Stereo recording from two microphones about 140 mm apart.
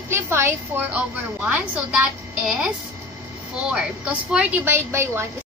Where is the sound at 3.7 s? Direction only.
5° right (ahead or behind).